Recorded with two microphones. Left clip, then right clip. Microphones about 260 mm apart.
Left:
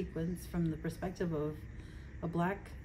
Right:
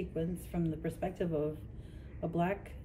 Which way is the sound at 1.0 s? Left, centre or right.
Centre.